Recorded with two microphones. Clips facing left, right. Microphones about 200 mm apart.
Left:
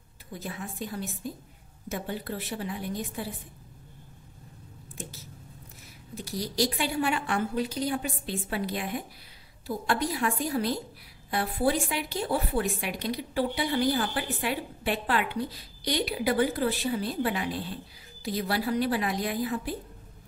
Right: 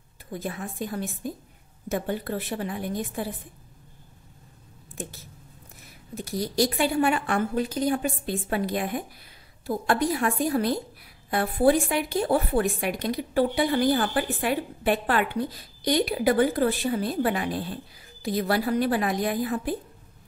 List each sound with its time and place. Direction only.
0.3 s a woman's voice: 50° right (ahead or behind)
6.1 s a woman's voice: 50° right (ahead or behind)